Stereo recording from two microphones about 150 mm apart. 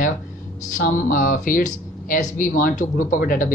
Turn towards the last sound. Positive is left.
turn(degrees=65)  # may be behind; listen again after turning